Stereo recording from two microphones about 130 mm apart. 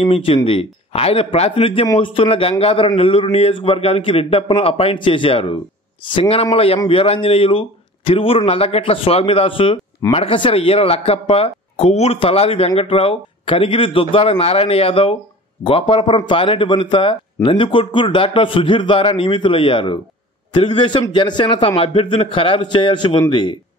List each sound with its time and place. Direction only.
0.0 s a man's voice: 45° left (ahead or behind)